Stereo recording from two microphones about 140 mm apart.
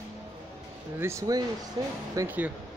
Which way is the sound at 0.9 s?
20° right (ahead or behind).